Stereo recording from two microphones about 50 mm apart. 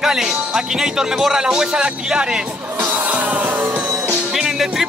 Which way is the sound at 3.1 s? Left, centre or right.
Right.